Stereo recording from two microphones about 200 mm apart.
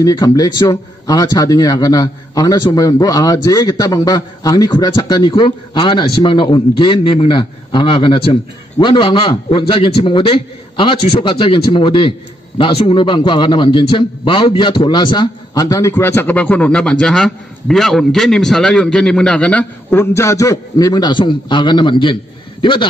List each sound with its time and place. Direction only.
0.0 s a man's voice: 20° left (ahead or behind)